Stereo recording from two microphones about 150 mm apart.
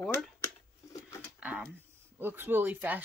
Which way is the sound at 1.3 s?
10° right (ahead or behind).